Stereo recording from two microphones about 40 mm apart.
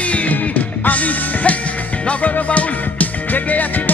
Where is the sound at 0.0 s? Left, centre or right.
Left.